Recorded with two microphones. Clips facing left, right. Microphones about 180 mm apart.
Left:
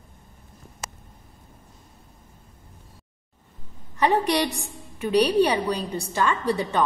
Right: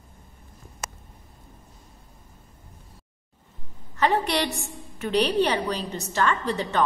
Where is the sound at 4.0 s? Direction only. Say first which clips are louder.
Left 2 dB; 15° left (ahead or behind).